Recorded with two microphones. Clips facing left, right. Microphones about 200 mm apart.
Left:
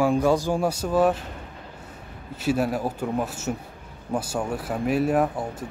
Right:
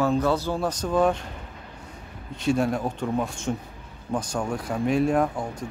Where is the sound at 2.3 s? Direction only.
5° left (ahead or behind).